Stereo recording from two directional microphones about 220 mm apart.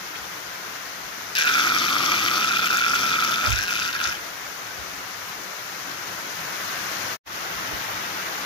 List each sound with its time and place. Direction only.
1.3 s water: 20° left (ahead or behind)